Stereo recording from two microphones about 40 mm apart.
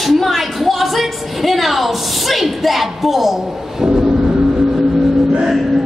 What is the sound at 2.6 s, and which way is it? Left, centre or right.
Speech, centre.